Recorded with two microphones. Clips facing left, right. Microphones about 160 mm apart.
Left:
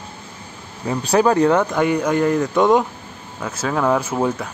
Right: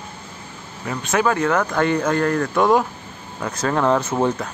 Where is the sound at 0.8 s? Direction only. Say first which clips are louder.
Left 4 dB; 30° left (ahead or behind).